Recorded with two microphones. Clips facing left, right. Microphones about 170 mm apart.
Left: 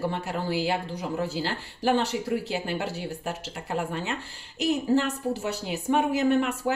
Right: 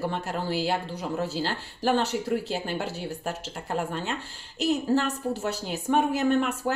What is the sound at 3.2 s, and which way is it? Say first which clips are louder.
Speech: even; 50° right (ahead or behind).